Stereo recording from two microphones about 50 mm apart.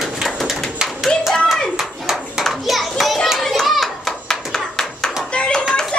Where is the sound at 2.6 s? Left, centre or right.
Centre.